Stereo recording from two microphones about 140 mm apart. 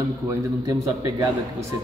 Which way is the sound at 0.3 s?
25° right (ahead or behind).